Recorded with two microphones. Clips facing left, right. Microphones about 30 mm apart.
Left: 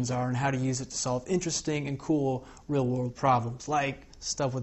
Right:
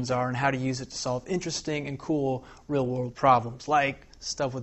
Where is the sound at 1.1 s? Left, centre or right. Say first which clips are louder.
Even; centre.